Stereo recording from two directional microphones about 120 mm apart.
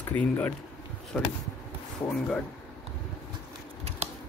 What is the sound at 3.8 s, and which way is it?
Scissors, 65° right (ahead or behind).